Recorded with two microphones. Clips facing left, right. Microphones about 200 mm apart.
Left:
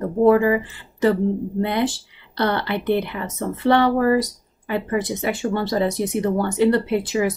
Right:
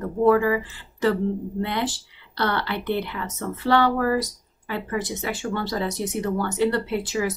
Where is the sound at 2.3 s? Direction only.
20° left (ahead or behind).